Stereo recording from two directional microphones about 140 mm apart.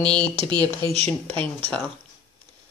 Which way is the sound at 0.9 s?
50° right (ahead or behind).